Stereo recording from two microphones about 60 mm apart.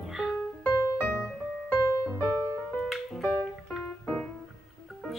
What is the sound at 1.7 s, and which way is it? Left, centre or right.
Music, left.